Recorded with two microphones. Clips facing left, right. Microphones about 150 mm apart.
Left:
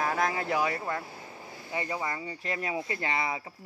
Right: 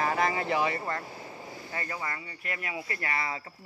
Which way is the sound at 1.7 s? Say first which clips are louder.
Left 4 dB; 20° left (ahead or behind).